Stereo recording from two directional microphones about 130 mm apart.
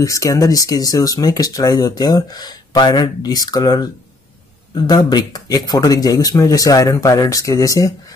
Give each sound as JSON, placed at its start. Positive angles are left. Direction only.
{"t": 0.0, "sound": "speech", "side_deg": 25}